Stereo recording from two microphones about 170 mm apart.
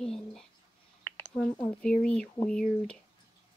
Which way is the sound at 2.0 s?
5° left (ahead or behind).